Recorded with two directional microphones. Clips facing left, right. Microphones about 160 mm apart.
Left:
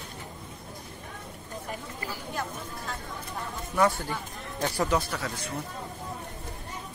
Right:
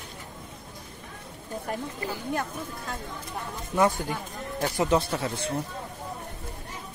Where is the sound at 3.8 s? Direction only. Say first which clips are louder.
Right 1 dB; 15° right (ahead or behind).